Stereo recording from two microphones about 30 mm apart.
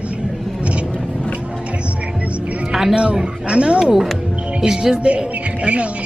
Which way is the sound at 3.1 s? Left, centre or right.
Right.